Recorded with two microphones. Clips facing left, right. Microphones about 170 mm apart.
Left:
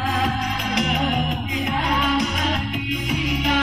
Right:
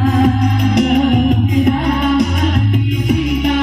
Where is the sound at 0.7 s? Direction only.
55° right (ahead or behind).